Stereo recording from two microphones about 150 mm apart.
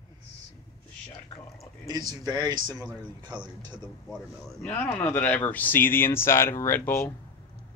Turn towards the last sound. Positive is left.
turn(degrees=15)  # may be behind; listen again after turning